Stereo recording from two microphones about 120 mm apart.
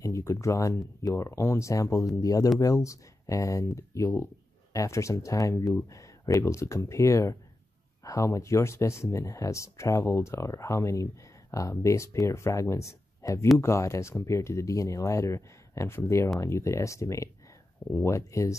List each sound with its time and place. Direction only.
0.0 s speech: 25° left (ahead or behind)